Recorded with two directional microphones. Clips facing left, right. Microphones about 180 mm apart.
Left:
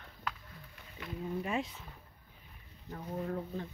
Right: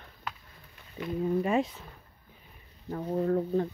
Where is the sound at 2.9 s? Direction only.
55° right (ahead or behind).